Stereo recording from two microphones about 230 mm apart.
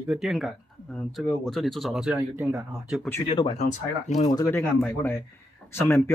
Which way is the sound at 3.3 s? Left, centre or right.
Left.